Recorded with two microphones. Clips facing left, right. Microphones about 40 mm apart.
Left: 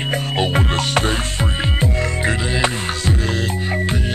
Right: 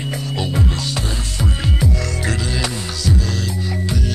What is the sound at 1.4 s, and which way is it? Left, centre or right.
Music, left.